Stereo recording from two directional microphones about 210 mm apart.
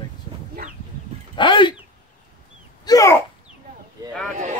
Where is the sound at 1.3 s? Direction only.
25° left (ahead or behind).